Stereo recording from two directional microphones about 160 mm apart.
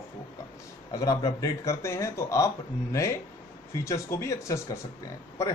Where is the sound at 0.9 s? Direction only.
20° left (ahead or behind).